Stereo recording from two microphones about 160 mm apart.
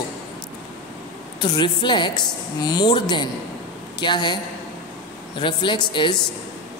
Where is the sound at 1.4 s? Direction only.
30° left (ahead or behind).